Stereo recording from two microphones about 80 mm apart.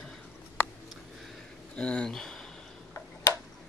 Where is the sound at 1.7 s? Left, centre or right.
Centre.